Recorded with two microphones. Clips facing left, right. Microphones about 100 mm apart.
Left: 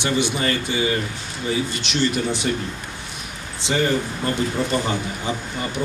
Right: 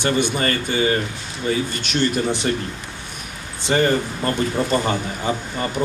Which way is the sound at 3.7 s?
45° right (ahead or behind).